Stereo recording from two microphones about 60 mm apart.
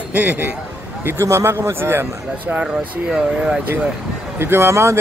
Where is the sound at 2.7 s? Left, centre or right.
Centre.